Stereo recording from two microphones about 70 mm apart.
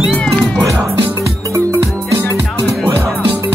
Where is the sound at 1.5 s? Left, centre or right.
Right.